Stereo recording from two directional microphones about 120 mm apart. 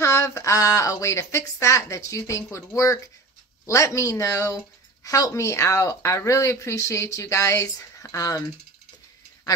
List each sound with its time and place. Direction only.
0.0 s speech: 25° left (ahead or behind)